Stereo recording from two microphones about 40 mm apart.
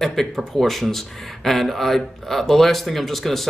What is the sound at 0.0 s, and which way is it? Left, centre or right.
Speech, centre.